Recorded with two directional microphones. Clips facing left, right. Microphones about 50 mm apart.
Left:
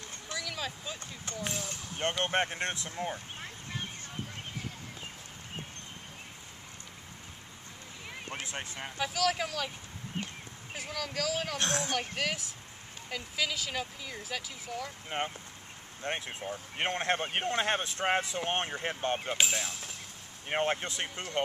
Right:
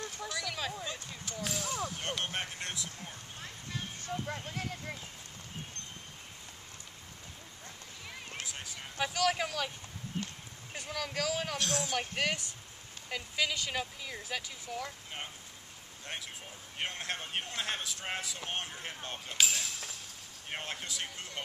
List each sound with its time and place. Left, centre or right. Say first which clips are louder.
0.3 s a sound: left 2 dB; centre
1.2 s speech: left 1 dB; left
8.5 s speech: left 5 dB; left
8.9 s speech: even; centre
10.9 s speech: left 1 dB; centre
11.5 s speech: left 2 dB; left
12.0 s speech: even; centre
15.0 s speech: left 9 dB; left